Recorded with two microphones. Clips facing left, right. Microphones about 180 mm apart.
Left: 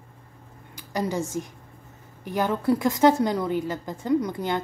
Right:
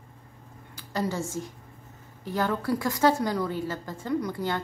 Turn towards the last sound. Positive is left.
turn(degrees=20)  # may be behind; listen again after turning